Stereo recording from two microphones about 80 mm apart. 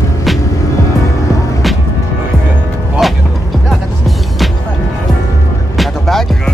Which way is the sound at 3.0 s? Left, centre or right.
Centre.